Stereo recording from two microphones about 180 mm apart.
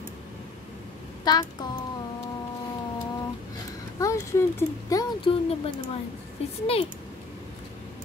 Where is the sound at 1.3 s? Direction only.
20° left (ahead or behind).